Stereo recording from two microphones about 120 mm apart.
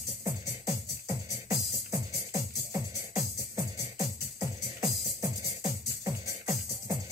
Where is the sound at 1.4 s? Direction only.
30° right (ahead or behind).